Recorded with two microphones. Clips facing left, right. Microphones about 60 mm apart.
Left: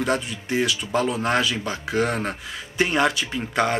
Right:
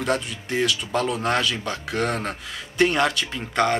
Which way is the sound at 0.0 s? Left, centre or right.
Centre.